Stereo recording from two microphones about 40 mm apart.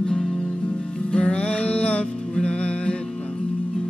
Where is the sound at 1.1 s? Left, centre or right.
Left.